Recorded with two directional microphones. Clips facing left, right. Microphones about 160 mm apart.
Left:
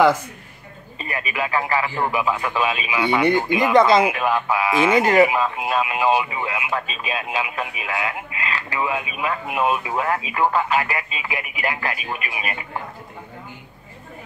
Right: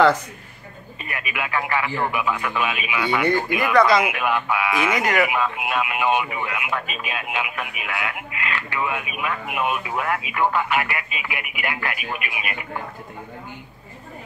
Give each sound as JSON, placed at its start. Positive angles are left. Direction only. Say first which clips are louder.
{"t": 1.0, "sound": "speech", "louder": "left 4 dB", "side_deg": 35}
{"t": 3.3, "sound": "speech", "louder": "left 3 dB", "side_deg": 20}